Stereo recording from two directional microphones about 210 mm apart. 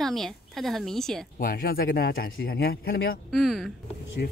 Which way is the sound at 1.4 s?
45° left (ahead or behind).